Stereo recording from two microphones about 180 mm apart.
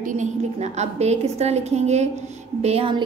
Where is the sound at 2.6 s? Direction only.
35° right (ahead or behind).